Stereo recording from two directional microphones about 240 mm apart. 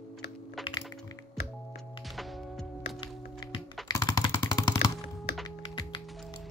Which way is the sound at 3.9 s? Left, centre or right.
Centre.